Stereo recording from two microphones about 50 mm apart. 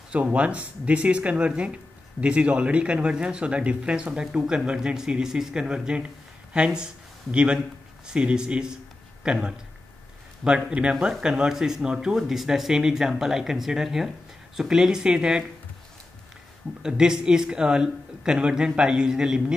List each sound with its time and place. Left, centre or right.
0.1 s speech: right
16.8 s speech: centre